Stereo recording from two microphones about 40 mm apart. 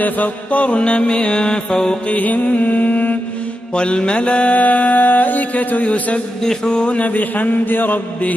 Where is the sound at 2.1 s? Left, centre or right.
Left.